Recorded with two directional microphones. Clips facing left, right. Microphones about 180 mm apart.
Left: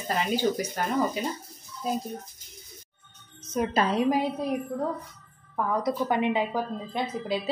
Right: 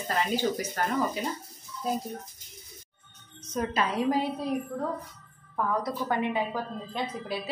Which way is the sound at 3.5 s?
10° left (ahead or behind).